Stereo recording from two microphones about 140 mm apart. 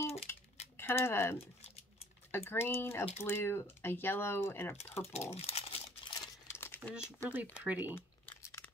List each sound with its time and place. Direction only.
0.3 s a sound: 15° left (ahead or behind)
0.7 s speech: 15° left (ahead or behind)
5.3 s crumpling: 50° left (ahead or behind)
6.0 s crumpling: 30° left (ahead or behind)
7.2 s speech: 10° right (ahead or behind)
7.9 s crumpling: 20° left (ahead or behind)